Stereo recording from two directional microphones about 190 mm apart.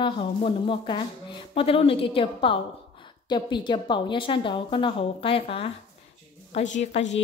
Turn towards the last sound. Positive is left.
turn(degrees=35)  # may be behind; listen again after turning